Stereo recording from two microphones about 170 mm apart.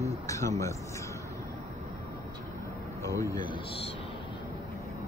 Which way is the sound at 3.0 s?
20° left (ahead or behind).